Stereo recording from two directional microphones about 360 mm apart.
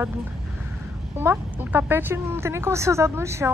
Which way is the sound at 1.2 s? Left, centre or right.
Centre.